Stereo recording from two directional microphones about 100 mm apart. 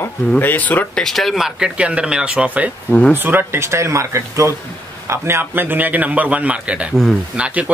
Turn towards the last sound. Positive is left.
turn(degrees=-15)  # may be behind; listen again after turning